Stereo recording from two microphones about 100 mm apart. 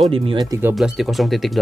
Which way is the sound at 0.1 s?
65° right (ahead or behind).